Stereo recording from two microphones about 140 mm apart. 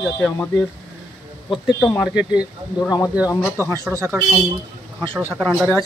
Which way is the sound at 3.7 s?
20° right (ahead or behind).